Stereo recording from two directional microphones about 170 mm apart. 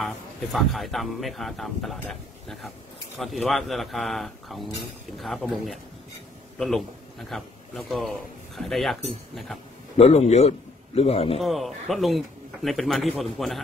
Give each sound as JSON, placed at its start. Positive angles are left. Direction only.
{"t": 0.0, "sound": "speech", "side_deg": 0}
{"t": 7.2, "sound": "speech", "side_deg": 0}
{"t": 9.9, "sound": "a man's voice", "side_deg": 40}
{"t": 11.4, "sound": "speech", "side_deg": 0}